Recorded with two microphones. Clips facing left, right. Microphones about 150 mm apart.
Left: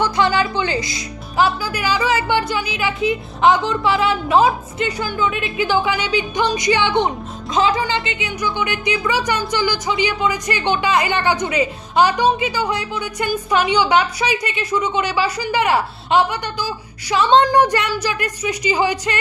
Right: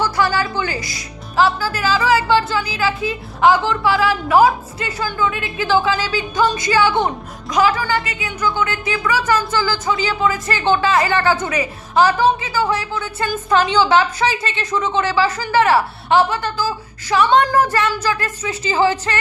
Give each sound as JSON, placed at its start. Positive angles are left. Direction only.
{"t": 0.0, "sound": "a woman's voice", "side_deg": 20}